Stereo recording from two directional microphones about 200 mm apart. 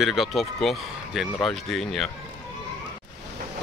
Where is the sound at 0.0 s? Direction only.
Centre (ahead or behind).